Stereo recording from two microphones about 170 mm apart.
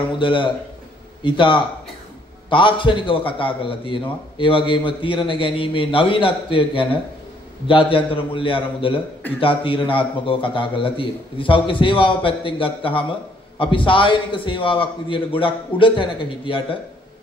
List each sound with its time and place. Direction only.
0.2 s a man's voice: 30° left (ahead or behind)